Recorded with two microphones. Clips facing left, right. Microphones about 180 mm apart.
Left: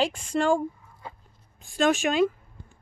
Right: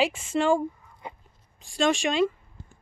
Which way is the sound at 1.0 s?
20° right (ahead or behind).